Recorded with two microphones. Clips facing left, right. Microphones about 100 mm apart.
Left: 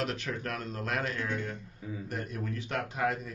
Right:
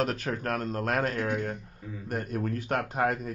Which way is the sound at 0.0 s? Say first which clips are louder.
Right 5 dB; 45° right (ahead or behind).